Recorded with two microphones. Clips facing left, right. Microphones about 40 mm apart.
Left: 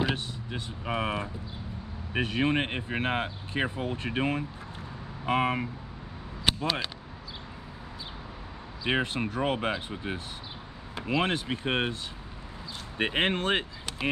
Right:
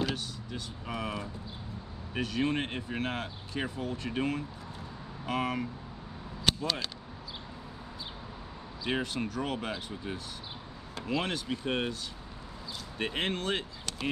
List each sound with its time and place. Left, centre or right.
0.0 s speech: left
6.5 s a sound: centre
8.8 s speech: left